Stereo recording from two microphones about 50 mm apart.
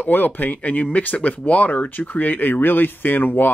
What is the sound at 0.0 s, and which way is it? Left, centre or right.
Speech, left.